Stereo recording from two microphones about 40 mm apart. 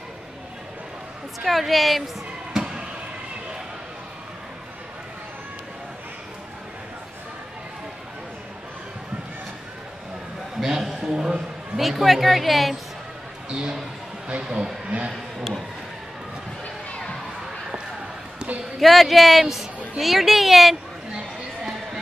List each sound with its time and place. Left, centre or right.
1.4 s a woman's voice: centre
2.5 s a sound: centre
10.6 s a sound: centre
11.7 s a woman's voice: centre
13.5 s a man's voice: centre
18.8 s a woman's voice: centre